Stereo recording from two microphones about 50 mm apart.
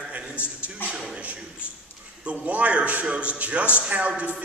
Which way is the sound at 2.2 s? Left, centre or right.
Right.